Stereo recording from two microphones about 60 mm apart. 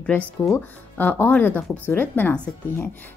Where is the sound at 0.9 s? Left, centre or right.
Left.